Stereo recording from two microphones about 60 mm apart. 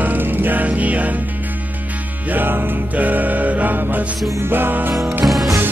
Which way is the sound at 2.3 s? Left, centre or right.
Right.